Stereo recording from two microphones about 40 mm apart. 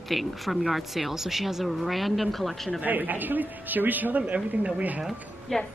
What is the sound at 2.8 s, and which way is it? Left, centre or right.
Speech, right.